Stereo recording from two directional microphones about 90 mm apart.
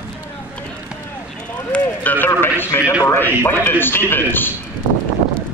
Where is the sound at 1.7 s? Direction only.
20° left (ahead or behind).